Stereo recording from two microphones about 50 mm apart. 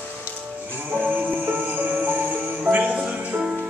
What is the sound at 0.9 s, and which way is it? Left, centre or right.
Music, right.